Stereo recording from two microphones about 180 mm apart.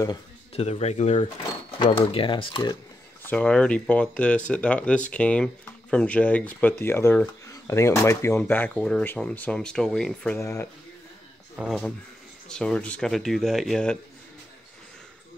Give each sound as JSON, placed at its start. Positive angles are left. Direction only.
{"t": 0.6, "sound": "speech", "side_deg": 35}
{"t": 1.8, "sound": "speech", "side_deg": 25}
{"t": 3.3, "sound": "speech", "side_deg": 5}
{"t": 11.5, "sound": "speech", "side_deg": -5}